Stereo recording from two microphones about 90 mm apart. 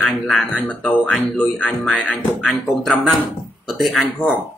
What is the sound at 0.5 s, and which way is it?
Speech, 15° left (ahead or behind).